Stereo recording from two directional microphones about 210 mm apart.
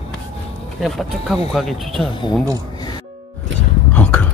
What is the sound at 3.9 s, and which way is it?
Cough, 10° left (ahead or behind).